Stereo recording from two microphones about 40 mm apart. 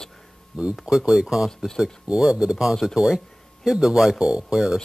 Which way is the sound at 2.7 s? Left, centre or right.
Centre.